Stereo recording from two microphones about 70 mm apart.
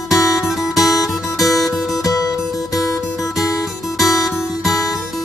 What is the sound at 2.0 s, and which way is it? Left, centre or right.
Music, left.